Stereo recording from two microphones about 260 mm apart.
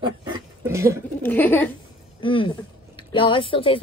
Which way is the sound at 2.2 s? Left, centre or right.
Centre.